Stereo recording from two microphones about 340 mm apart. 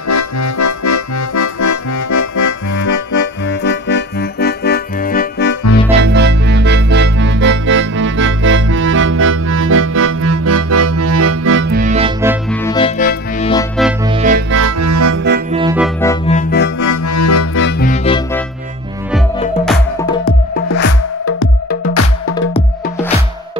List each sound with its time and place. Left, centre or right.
0.1 s music: left
3.4 s music: left
6.0 s music: right
12.2 s music: centre
12.6 s music: centre
14.0 s music: centre
14.5 s accordion: right
15.5 s music: centre
16.3 s music: left
16.8 s accordion: left
17.6 s music: left
19.6 s music: centre
20.6 s music: left
22.3 s music: centre